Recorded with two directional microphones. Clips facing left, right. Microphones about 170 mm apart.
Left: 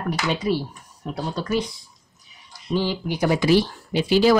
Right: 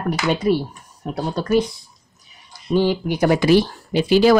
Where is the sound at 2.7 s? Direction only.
50° right (ahead or behind).